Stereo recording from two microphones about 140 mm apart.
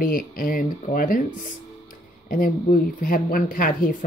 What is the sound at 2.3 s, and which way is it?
Speech, 90° left.